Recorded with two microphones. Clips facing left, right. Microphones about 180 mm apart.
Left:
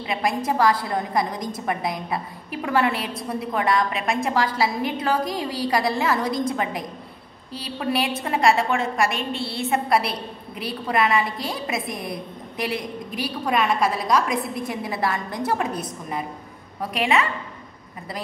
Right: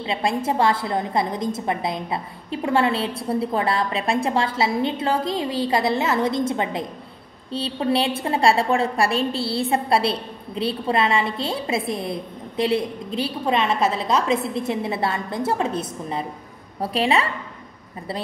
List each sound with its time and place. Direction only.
0.0 s a woman's voice: 25° right (ahead or behind)